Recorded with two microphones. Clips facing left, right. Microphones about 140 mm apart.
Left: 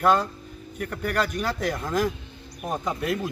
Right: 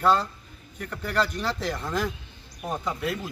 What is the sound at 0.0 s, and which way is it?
Speech, 10° left (ahead or behind).